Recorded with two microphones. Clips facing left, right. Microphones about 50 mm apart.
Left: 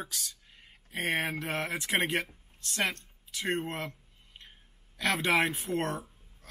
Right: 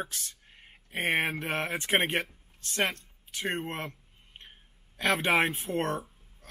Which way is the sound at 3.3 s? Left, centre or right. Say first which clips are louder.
Even; right.